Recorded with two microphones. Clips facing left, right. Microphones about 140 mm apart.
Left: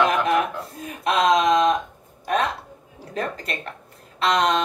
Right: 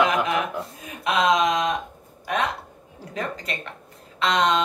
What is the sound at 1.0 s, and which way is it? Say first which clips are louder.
Speech: left 2 dB; 35° left (ahead or behind).